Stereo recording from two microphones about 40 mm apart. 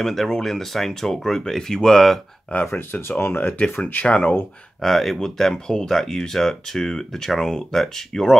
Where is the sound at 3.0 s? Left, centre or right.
Left.